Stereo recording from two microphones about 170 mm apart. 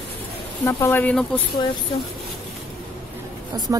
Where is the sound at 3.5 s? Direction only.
20° right (ahead or behind).